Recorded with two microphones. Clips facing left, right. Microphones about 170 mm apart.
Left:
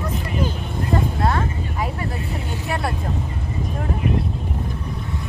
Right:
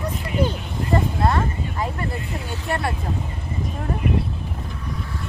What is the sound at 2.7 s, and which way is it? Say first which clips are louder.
Vehicle: right 1 dB; centre (ahead or behind).